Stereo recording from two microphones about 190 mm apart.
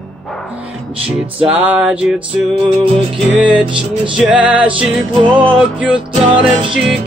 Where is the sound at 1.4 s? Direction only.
5° right (ahead or behind).